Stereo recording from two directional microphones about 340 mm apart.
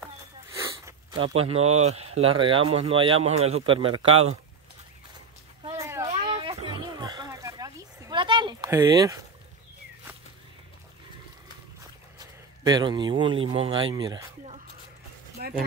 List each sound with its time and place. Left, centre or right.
0.6 s gasp: centre
2.1 s speech: centre
5.7 s a sound: centre
6.0 s oink: centre
12.2 s speech: centre
15.3 s a sound: centre